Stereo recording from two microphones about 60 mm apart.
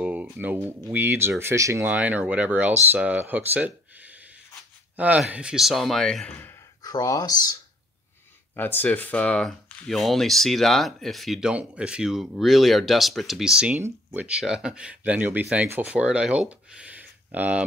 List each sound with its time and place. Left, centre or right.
0.0 s speech: right
1.4 s speech: right
1.9 s speech: right
5.6 s speech: centre
6.8 s speech: left
8.5 s speech: left
9.8 s speech: centre
11.5 s speech: centre
13.4 s speech: centre
14.1 s speech: right